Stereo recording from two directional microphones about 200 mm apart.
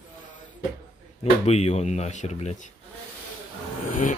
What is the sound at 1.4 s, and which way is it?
Speech, 30° left (ahead or behind).